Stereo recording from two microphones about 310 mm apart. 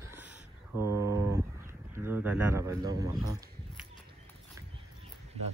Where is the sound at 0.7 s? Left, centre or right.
Centre.